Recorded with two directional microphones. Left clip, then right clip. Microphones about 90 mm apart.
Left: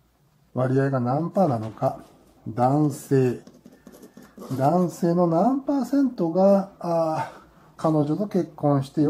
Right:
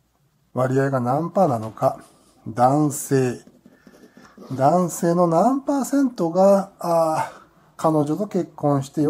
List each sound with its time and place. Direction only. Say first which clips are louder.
0.6 s speech: right 3 dB; 30° right (ahead or behind)
4.6 s speech: right 4 dB; 35° right (ahead or behind)
8.3 s speech: right 1 dB; 15° right (ahead or behind)